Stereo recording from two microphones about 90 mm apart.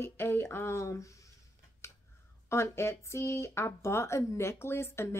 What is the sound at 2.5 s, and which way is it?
Speech, 30° left (ahead or behind).